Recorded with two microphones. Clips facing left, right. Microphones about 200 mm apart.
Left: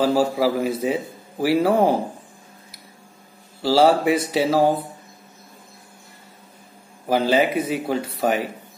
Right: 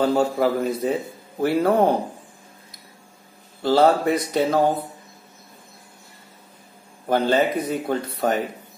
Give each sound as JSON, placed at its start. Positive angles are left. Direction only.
{"t": 0.0, "sound": "speech", "side_deg": 5}
{"t": 3.6, "sound": "speech", "side_deg": 10}
{"t": 7.1, "sound": "speech", "side_deg": 5}